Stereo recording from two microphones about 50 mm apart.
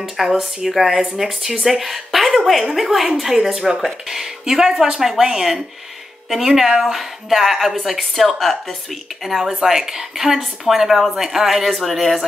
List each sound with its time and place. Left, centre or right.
0.3 s a woman's voice: centre